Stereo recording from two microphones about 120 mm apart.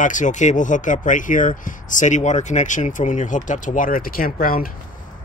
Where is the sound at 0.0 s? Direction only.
90° left.